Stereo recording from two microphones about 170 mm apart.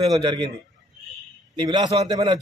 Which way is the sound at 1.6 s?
25° right (ahead or behind).